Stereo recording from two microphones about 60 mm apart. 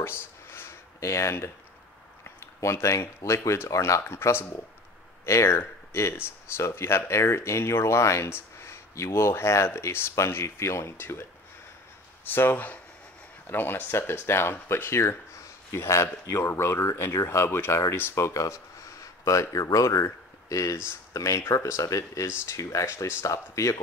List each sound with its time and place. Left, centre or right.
0.2 s a sound: left
3.4 s speech: left
12.3 s speech: left
18.2 s a sound: left
19.5 s speech: left
21.4 s speech: left